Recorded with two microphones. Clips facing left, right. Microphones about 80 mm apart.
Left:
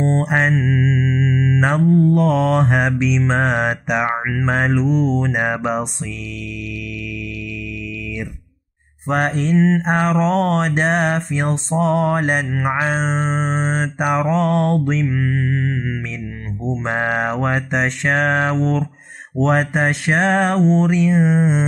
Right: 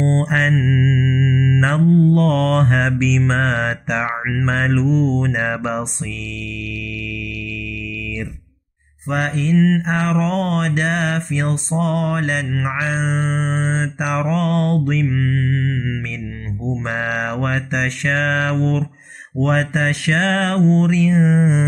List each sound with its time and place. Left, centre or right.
0.0 s mantra: centre
9.0 s mantra: left